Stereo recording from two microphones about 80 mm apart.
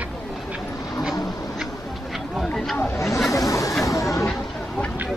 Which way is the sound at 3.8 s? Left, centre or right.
Left.